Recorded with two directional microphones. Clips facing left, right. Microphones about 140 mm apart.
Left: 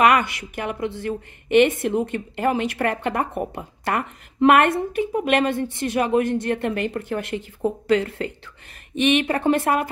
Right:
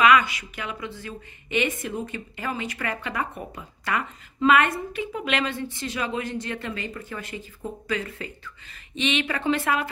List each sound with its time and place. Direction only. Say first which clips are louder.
0.0 s a woman's voice: left 2 dB; 55° left (ahead or behind)
5.1 s a woman's voice: left 7 dB; 50° left (ahead or behind); by 8.3 s 65° left (ahead or behind)
8.9 s speech: left 7 dB; 50° left (ahead or behind)